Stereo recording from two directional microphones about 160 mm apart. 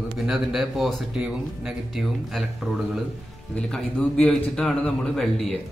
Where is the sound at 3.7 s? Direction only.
5° left (ahead or behind).